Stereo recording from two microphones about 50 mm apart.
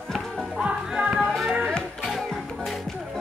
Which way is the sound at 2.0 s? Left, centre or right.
Centre.